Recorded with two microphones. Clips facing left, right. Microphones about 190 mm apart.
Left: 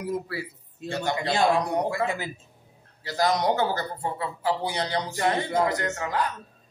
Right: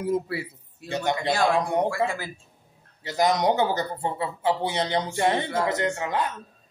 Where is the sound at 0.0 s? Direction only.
25° right (ahead or behind).